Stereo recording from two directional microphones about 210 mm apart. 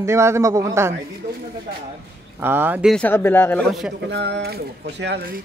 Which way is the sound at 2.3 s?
10° right (ahead or behind).